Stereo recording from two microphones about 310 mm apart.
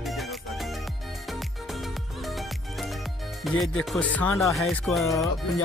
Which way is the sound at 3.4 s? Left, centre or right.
Centre.